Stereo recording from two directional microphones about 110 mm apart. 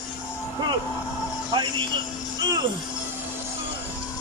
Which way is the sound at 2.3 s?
35° right (ahead or behind).